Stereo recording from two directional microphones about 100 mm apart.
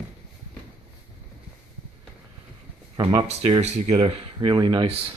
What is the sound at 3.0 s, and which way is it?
Speech, 50° right (ahead or behind).